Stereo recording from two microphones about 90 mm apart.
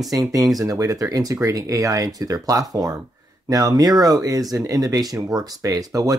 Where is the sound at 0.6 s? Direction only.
35° right (ahead or behind).